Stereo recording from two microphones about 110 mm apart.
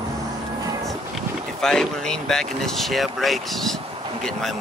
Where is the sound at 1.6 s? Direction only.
5° left (ahead or behind).